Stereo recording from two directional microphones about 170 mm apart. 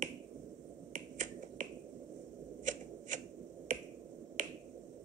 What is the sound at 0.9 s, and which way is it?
Finger snapping, 50° right (ahead or behind).